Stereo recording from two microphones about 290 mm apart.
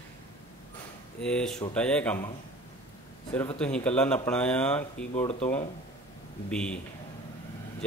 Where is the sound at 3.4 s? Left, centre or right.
Centre.